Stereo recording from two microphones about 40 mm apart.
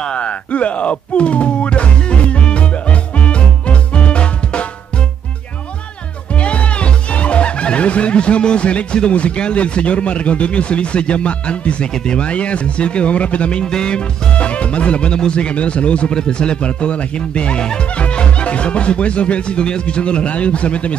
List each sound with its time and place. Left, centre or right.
0.0 s music: left
6.3 s speech: left
11.9 s speech: centre
12.2 s speech: left